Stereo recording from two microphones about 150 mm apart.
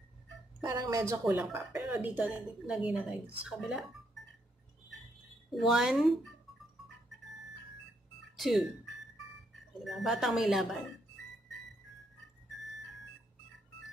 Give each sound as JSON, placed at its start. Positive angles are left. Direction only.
{"t": 0.7, "sound": "a woman's voice", "side_deg": -20}
{"t": 1.3, "sound": "a woman's voice", "side_deg": -5}
{"t": 5.5, "sound": "speech", "side_deg": 0}
{"t": 8.4, "sound": "speech", "side_deg": 0}
{"t": 9.8, "sound": "speech", "side_deg": 0}